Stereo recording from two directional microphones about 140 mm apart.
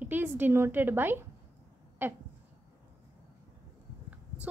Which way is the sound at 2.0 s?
15° right (ahead or behind).